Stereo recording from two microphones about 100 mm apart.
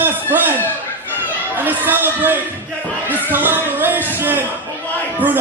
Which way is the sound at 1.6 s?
20° right (ahead or behind).